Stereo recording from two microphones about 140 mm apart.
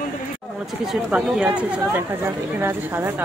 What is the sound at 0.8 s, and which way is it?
A woman's voice, 5° right (ahead or behind).